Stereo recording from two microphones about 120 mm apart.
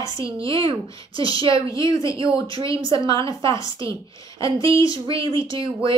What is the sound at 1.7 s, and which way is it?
Speech, 25° left (ahead or behind).